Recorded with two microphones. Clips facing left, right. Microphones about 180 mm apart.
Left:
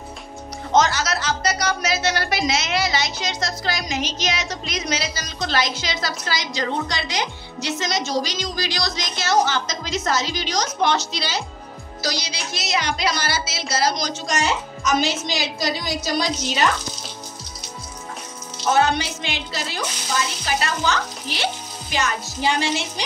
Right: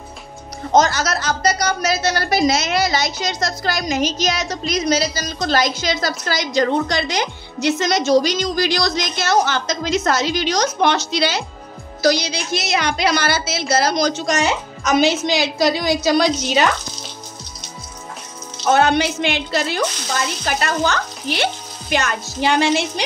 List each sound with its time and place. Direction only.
0.7 s a woman's voice: 40° right (ahead or behind); by 16.6 s 65° right (ahead or behind)
18.7 s a woman's voice: 60° right (ahead or behind)